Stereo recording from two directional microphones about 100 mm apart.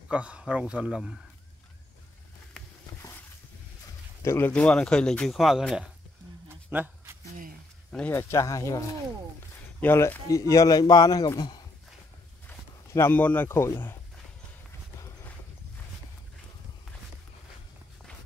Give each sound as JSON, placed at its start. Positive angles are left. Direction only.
{"t": 0.1, "sound": "speech", "side_deg": -10}
{"t": 3.0, "sound": "a sound", "side_deg": 25}
{"t": 4.2, "sound": "speech", "side_deg": 25}
{"t": 4.5, "sound": "speech", "side_deg": 10}
{"t": 5.3, "sound": "speech", "side_deg": 0}
{"t": 6.7, "sound": "a sound", "side_deg": -15}
{"t": 8.1, "sound": "a man's voice", "side_deg": 30}
{"t": 9.8, "sound": "speech", "side_deg": 20}
{"t": 10.5, "sound": "a man's voice", "side_deg": 35}
{"t": 12.9, "sound": "speech", "side_deg": 20}